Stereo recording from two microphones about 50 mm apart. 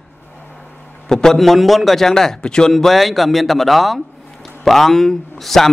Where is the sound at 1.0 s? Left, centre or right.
Centre.